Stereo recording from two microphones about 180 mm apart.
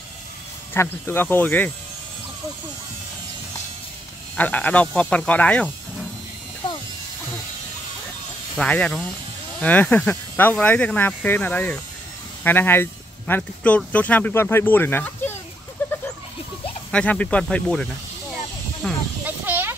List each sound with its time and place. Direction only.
0.7 s speech: 10° left (ahead or behind)
4.4 s speech: 10° left (ahead or behind)
6.6 s electric shaver: 25° left (ahead or behind)
8.5 s speech: 5° left (ahead or behind)
16.9 s speech: 5° left (ahead or behind)
18.8 s snake: 5° left (ahead or behind)
19.2 s snake: 10° right (ahead or behind)